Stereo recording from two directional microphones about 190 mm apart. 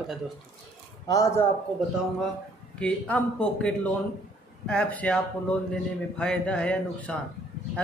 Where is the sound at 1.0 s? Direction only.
20° left (ahead or behind).